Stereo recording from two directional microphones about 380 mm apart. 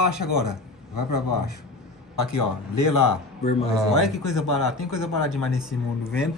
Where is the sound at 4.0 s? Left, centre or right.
Centre.